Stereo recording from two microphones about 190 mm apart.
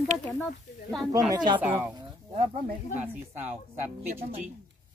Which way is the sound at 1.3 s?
25° right (ahead or behind).